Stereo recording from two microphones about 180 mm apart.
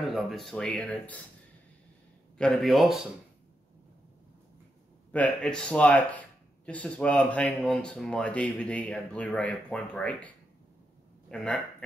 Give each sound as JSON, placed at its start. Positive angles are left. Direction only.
{"t": 0.1, "sound": "speech", "side_deg": 0}
{"t": 2.3, "sound": "speech", "side_deg": 0}
{"t": 5.1, "sound": "a man's voice", "side_deg": 5}